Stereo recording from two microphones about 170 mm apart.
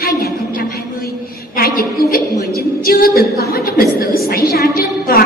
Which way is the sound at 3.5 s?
60° left (ahead or behind).